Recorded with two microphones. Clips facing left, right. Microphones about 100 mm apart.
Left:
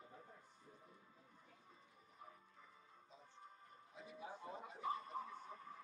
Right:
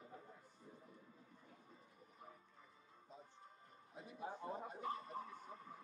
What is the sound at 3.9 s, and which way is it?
Music, 45° right (ahead or behind).